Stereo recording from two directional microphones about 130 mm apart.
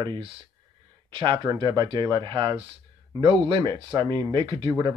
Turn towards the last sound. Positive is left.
turn(degrees=-35)  # may be behind; listen again after turning